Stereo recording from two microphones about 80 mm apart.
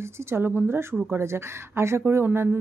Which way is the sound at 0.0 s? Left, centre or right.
Right.